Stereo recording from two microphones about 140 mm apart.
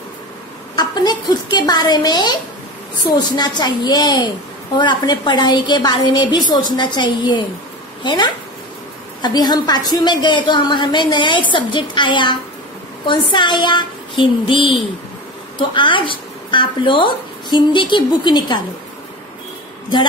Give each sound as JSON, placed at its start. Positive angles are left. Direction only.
{"t": 0.7, "sound": "a woman's voice", "side_deg": 30}